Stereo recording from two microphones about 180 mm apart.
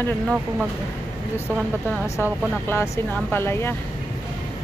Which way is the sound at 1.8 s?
15° left (ahead or behind).